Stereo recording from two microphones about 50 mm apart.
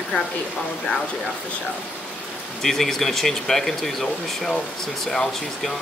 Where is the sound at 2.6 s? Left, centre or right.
Centre.